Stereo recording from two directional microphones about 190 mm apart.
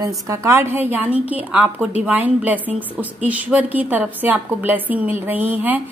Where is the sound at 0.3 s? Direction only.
15° right (ahead or behind).